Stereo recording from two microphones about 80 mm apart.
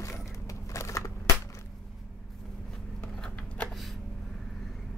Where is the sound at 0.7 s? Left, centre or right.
Left.